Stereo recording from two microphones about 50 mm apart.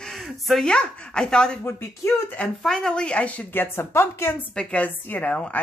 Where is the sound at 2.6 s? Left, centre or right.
Centre; by 3.5 s left.